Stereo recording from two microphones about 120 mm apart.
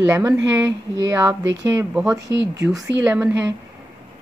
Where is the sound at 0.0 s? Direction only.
20° right (ahead or behind).